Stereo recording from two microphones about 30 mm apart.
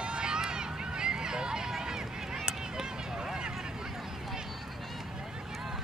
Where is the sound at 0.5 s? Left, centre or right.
Right.